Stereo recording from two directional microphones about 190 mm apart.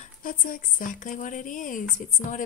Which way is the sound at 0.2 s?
45° left (ahead or behind).